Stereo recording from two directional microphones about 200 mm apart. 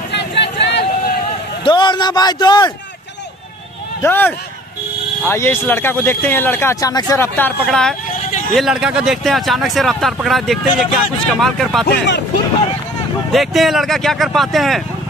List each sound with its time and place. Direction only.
0.1 s vehicle: 60° left (ahead or behind)
1.6 s a man's voice: 25° left (ahead or behind)
4.0 s speech: 10° left (ahead or behind)
13.3 s speech: centre (ahead or behind)